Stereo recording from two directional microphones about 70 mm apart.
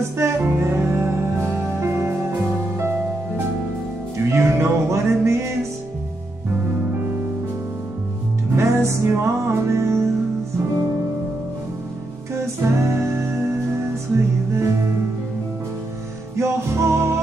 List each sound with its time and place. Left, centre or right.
0.2 s music: right
4.3 s music: right
8.5 s music: right
12.6 s music: right
16.3 s music: right